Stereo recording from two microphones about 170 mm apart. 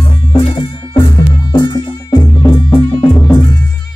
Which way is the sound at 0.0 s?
30° left (ahead or behind).